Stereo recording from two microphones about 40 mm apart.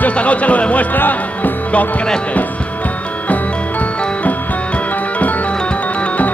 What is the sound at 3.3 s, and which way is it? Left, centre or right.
Music, left.